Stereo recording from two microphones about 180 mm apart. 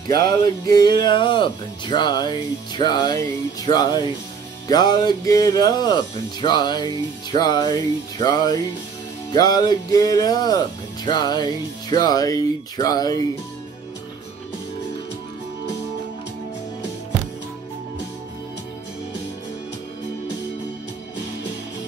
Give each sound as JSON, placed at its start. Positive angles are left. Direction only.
{"t": 0.7, "sound": "speech", "side_deg": 20}